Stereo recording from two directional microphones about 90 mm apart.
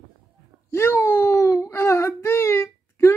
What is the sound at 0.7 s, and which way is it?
Speech, 30° left (ahead or behind).